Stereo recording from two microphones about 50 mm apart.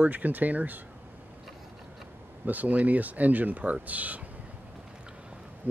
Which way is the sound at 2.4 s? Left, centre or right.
Right.